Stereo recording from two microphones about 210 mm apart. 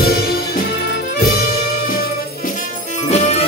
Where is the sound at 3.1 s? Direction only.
30° left (ahead or behind).